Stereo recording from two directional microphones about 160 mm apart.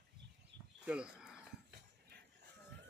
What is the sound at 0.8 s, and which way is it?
Speech, 5° right (ahead or behind).